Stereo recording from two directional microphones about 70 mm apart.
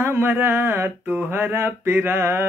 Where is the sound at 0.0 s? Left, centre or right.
Right.